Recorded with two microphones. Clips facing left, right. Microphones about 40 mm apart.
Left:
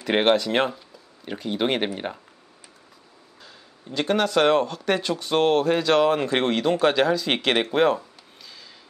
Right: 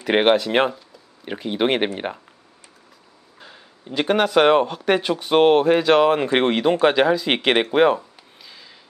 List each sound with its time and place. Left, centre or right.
0.0 s speech: centre
3.3 s speech: right
7.7 s a sound: centre